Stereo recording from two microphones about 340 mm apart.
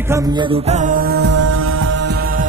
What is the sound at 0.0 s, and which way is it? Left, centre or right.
Music, centre.